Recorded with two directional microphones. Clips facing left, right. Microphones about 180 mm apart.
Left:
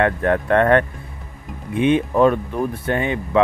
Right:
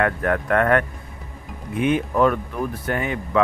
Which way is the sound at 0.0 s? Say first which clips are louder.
Left 3 dB; 25° left (ahead or behind).